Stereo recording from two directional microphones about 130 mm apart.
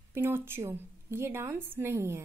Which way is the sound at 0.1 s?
15° right (ahead or behind).